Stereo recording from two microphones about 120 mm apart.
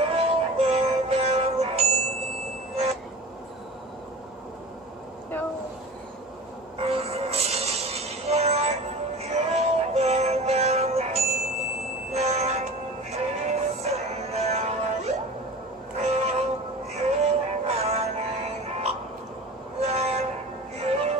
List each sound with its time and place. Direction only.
0.0 s synthetic singing: 55° right (ahead or behind)
6.8 s music: 60° right (ahead or behind)
9.2 s synthetic singing: 65° right (ahead or behind)
16.0 s cat: 65° right (ahead or behind)
17.2 s synthetic singing: 65° right (ahead or behind)
19.8 s train: 65° right (ahead or behind)
20.7 s music: 60° right (ahead or behind)